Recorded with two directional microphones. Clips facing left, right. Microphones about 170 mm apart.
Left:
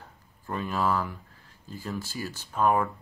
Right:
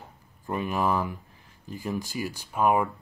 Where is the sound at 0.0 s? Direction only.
15° right (ahead or behind).